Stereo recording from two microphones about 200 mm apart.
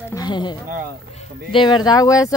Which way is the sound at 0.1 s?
20° left (ahead or behind).